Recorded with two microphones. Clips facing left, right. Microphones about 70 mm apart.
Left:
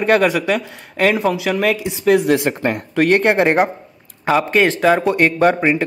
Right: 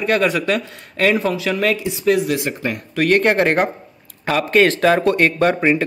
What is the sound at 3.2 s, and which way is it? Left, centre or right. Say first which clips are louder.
A man's voice: left 2 dB; centre.